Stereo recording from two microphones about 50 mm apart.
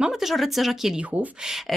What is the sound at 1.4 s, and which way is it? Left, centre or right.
Speech, centre.